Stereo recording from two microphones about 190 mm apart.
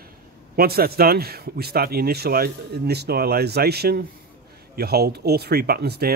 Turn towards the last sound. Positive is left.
turn(degrees=-55)  # may be behind; listen again after turning